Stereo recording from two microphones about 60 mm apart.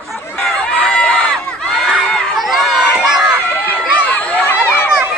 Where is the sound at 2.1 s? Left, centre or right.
Centre.